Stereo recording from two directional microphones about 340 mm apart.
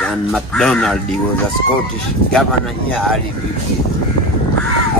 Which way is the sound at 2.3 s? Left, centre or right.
Centre.